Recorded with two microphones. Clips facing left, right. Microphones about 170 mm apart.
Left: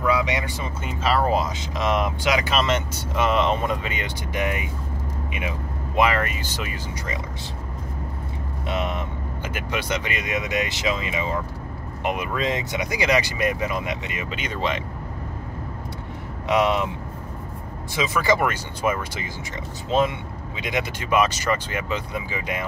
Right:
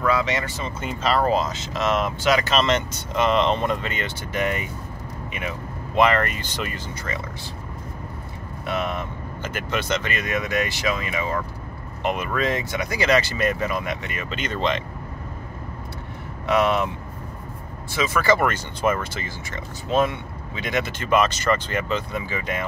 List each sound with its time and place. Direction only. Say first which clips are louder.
0.0 s speech: even; 15° left (ahead or behind)
5.9 s speech: right 2 dB; 5° left (ahead or behind)
8.6 s speech: even; 20° left (ahead or behind)
16.4 s speech: even; 15° left (ahead or behind)
17.9 s speech: right 1 dB; 20° left (ahead or behind)